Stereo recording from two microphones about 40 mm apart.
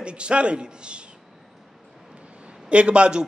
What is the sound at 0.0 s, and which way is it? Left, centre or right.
A man's voice, right.